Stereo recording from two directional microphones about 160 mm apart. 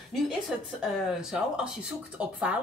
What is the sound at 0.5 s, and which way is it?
A woman's voice, 5° right (ahead or behind).